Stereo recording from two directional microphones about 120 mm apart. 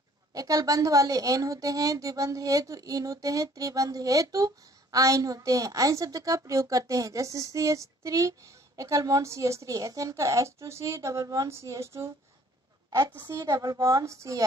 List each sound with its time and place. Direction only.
0.3 s a woman's voice: 30° right (ahead or behind)
13.1 s a woman's voice: 20° right (ahead or behind)
13.4 s a woman's voice: 30° right (ahead or behind)